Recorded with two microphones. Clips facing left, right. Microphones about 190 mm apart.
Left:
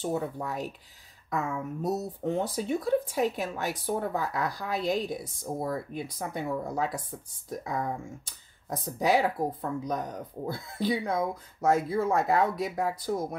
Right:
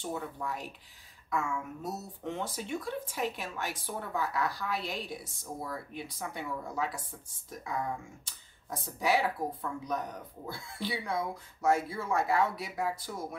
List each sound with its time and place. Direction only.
0.1 s speech: 40° left (ahead or behind)
8.6 s speech: 40° left (ahead or behind)